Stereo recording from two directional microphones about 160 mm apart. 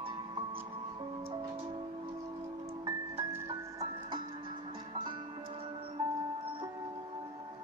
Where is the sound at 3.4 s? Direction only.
25° right (ahead or behind).